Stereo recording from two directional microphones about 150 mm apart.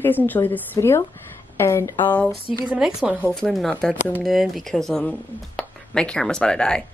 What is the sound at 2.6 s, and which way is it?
Speech, 5° right (ahead or behind).